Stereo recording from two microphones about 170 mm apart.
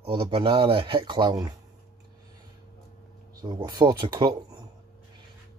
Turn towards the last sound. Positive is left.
turn(degrees=-25)  # may be behind; listen again after turning